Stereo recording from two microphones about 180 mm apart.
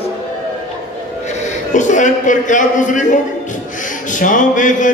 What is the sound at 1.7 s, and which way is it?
Music, 45° left (ahead or behind).